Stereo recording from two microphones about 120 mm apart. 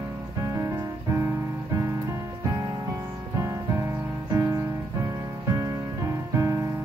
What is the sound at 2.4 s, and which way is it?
Music, 25° right (ahead or behind).